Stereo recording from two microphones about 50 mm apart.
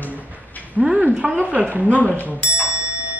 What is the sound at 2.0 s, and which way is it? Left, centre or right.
Speech, right.